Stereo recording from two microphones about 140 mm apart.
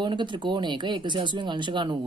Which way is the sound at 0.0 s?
35° right (ahead or behind).